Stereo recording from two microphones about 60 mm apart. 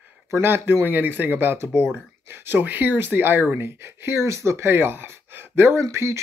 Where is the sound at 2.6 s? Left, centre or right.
Right.